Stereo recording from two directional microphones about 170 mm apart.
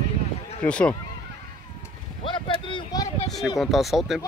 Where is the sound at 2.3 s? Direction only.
30° left (ahead or behind).